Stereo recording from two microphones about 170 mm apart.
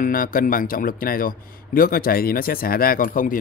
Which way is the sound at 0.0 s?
55° left (ahead or behind).